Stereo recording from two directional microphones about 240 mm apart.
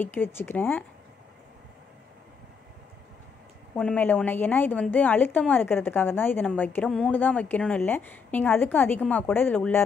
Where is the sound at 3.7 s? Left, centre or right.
Centre.